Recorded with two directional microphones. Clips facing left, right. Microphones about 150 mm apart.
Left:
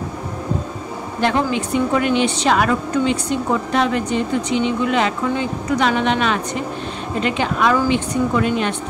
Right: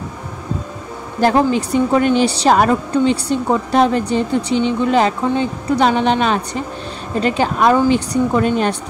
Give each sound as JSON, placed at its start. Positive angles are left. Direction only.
{"t": 1.2, "sound": "a woman's voice", "side_deg": -35}